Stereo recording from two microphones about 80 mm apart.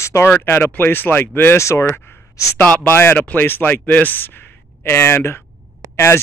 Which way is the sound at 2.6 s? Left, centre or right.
Centre.